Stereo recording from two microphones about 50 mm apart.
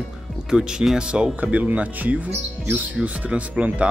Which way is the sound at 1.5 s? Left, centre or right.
Right.